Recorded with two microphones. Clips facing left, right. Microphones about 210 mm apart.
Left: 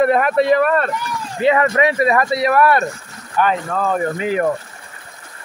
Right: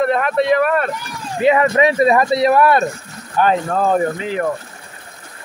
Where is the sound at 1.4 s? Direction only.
20° right (ahead or behind).